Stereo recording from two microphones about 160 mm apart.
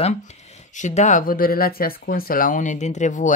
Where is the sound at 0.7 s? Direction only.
50° left (ahead or behind).